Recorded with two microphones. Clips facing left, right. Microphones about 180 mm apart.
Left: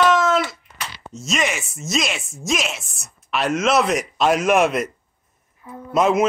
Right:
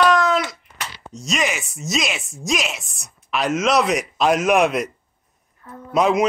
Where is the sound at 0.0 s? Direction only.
Centre (ahead or behind).